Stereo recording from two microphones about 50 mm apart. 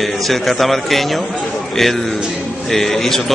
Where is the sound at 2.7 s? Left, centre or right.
Centre.